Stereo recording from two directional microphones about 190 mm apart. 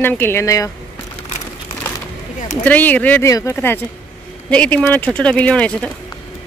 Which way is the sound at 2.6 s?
10° left (ahead or behind).